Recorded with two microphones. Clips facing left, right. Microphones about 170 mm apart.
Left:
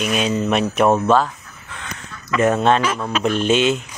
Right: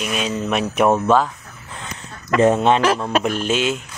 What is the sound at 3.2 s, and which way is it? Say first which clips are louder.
Speech: left 3 dB; 5° right (ahead or behind).